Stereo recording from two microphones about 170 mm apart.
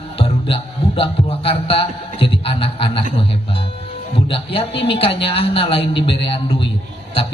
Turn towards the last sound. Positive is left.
turn(degrees=30)  # may be behind; listen again after turning